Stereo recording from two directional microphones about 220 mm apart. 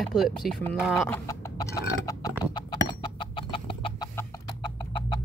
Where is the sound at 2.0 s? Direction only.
15° left (ahead or behind).